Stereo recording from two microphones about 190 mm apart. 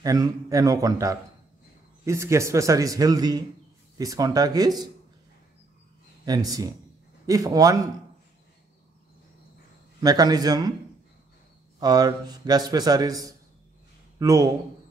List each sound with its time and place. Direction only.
0.0 s a man's voice: 20° right (ahead or behind)
6.2 s a man's voice: 20° right (ahead or behind)
9.9 s a man's voice: 20° right (ahead or behind)
11.8 s a man's voice: 20° right (ahead or behind)